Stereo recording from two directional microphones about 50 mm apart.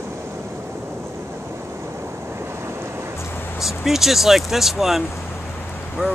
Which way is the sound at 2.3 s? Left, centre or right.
Right.